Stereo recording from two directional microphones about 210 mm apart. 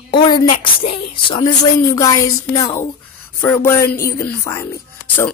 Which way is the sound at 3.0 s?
10° left (ahead or behind).